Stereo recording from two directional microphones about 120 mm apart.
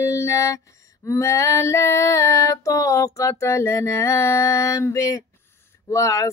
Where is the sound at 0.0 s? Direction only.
25° left (ahead or behind).